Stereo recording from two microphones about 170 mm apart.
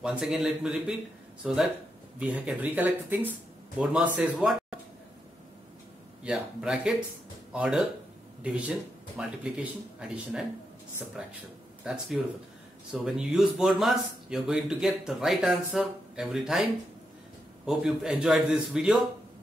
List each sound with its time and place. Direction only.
0.0 s speech: 5° right (ahead or behind)
6.2 s speech: 5° right (ahead or behind)
17.6 s speech: 5° right (ahead or behind)